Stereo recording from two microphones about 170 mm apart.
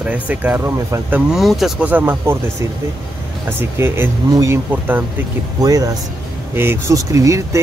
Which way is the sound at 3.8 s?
15° right (ahead or behind).